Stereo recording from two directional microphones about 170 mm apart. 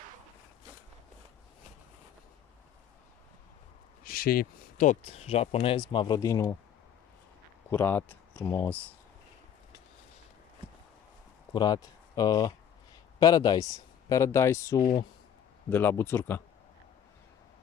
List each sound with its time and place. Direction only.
4.0 s speech: 60° left (ahead or behind)
5.0 s speech: 35° left (ahead or behind); by 6.5 s 20° left (ahead or behind)
7.7 s speech: 10° left (ahead or behind)
11.5 s speech: 25° left (ahead or behind)